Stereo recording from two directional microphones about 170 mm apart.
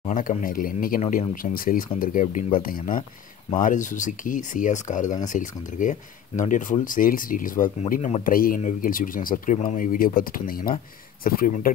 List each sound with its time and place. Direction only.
0.1 s speech: 50° left (ahead or behind)